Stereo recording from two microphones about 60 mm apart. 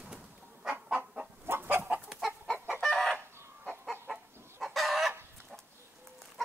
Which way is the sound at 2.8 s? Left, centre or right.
Centre.